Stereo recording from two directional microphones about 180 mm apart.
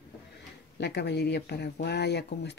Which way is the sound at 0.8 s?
70° left (ahead or behind).